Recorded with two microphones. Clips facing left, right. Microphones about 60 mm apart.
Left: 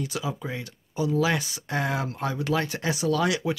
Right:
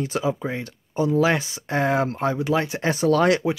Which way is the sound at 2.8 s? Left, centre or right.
Right.